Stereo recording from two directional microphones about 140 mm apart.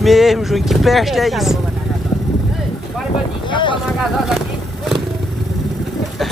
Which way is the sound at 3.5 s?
35° left (ahead or behind).